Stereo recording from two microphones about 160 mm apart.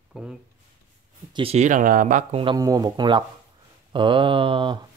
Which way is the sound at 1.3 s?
35° right (ahead or behind).